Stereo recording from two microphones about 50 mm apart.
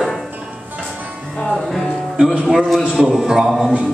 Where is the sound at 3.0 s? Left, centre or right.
Centre.